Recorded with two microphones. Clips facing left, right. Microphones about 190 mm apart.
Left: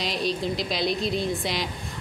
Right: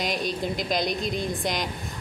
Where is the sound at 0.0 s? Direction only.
45° right (ahead or behind).